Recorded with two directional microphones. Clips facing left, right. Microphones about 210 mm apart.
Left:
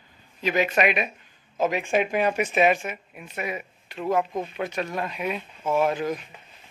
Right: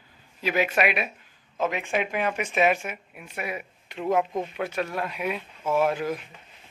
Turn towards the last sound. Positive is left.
turn(degrees=-5)  # may be behind; listen again after turning